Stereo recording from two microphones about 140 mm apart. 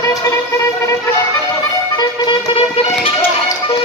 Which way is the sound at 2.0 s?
40° left (ahead or behind).